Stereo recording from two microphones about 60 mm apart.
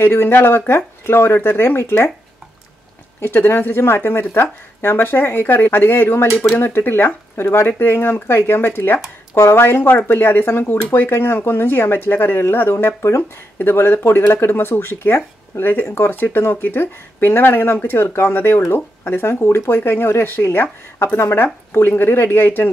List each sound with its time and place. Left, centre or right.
0.0 s speech: left
3.2 s speech: left